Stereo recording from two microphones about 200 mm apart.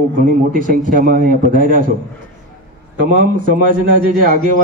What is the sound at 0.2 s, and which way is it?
A man's voice, 45° right (ahead or behind).